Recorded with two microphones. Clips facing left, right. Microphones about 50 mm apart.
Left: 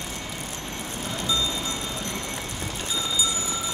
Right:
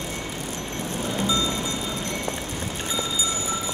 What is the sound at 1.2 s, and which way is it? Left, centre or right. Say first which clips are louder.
Music: right 2 dB; right.